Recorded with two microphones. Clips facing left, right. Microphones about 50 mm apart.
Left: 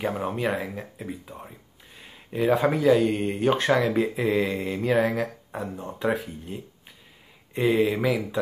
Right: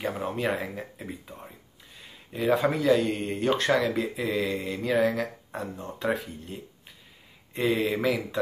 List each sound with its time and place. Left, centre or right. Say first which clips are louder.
0.0 s speech: left 2 dB; centre
0.5 s speech: left 1 dB; centre
2.0 s a sound: left 5 dB; centre
2.7 s speech: left 3 dB; centre